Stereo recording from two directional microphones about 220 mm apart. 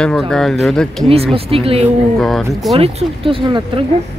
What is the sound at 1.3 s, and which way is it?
Speech, 25° right (ahead or behind).